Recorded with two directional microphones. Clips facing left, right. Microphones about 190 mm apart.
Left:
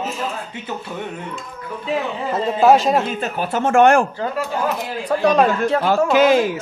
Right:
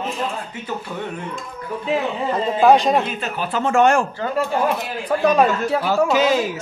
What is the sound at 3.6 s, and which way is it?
Speech, 55° left (ahead or behind).